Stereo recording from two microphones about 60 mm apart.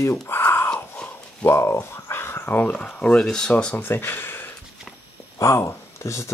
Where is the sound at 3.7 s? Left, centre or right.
Left.